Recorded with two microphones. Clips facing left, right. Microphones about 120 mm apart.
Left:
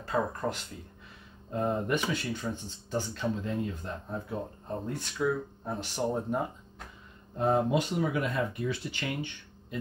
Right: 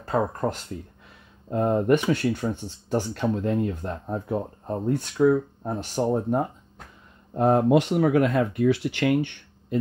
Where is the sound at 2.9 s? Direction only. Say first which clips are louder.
Right 7 dB; 65° right (ahead or behind); by 4.7 s 45° right (ahead or behind).